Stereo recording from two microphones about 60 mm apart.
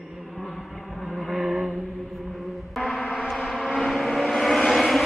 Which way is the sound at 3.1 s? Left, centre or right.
Centre.